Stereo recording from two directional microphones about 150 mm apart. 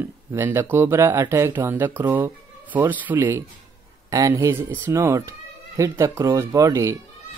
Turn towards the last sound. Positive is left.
turn(degrees=-20)  # may be behind; listen again after turning